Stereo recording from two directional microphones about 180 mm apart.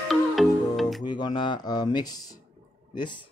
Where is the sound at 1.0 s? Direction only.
25° left (ahead or behind).